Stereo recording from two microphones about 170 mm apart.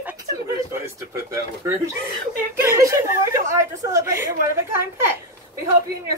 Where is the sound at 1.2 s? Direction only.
20° right (ahead or behind).